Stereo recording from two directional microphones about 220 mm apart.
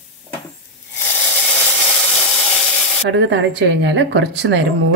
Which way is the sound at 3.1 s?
55° right (ahead or behind).